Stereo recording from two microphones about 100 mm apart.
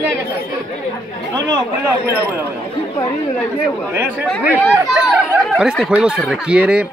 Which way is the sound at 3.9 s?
15° right (ahead or behind).